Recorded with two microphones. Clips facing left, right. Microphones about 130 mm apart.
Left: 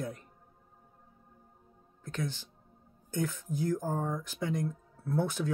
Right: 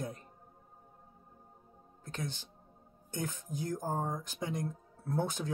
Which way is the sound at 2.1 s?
20° right (ahead or behind).